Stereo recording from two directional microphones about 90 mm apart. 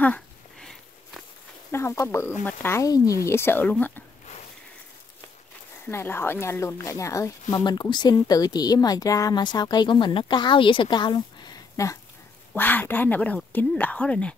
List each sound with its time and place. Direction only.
0.6 s a sound: 5° left (ahead or behind)
1.7 s speech: 30° left (ahead or behind)
2.8 s speech: 40° left (ahead or behind); by 3.9 s 20° left (ahead or behind)
5.9 s speech: 25° left (ahead or behind)
7.6 s speech: 55° left (ahead or behind)
11.7 s speech: 35° left (ahead or behind)
12.5 s speech: 20° left (ahead or behind)